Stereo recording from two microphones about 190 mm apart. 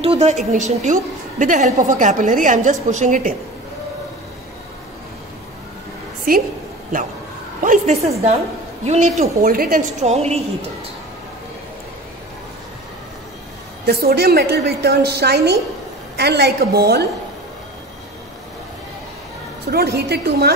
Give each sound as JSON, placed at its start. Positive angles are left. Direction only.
{"t": 0.0, "sound": "a woman's voice", "side_deg": -30}
{"t": 6.3, "sound": "a woman's voice", "side_deg": -50}
{"t": 7.6, "sound": "a woman's voice", "side_deg": -40}
{"t": 9.4, "sound": "a woman's voice", "side_deg": -50}
{"t": 13.8, "sound": "a woman's voice", "side_deg": -55}
{"t": 19.7, "sound": "a woman's voice", "side_deg": -60}